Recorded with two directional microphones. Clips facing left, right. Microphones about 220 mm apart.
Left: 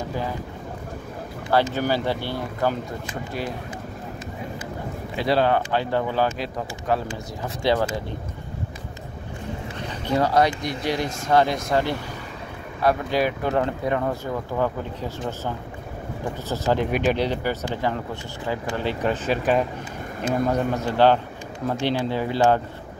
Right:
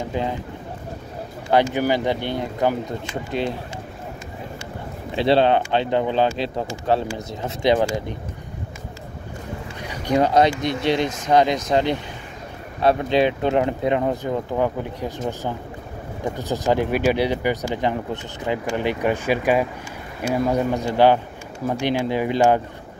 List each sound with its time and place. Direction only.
1.5 s speech: 15° right (ahead or behind)
5.1 s speech: 25° right (ahead or behind)
9.8 s speech: 15° right (ahead or behind)